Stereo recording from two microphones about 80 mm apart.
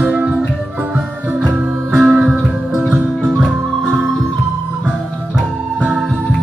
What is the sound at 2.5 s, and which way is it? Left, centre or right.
Music, centre.